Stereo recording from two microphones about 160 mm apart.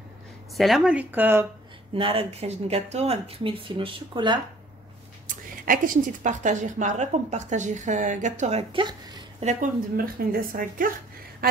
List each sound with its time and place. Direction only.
0.6 s speech: centre (ahead or behind)
2.0 s speech: 35° right (ahead or behind)
5.3 s a woman's voice: 55° right (ahead or behind)
9.9 s speech: 65° right (ahead or behind)